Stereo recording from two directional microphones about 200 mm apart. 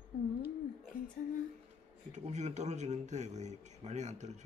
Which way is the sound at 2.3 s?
35° right (ahead or behind).